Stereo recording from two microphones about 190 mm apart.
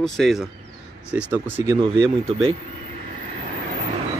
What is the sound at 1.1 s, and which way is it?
Speech, 15° right (ahead or behind).